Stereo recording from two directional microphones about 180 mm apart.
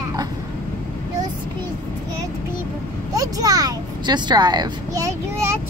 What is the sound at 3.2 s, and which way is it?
A child's voice, 20° right (ahead or behind).